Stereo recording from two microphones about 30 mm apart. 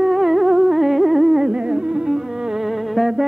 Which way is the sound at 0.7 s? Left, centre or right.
Centre.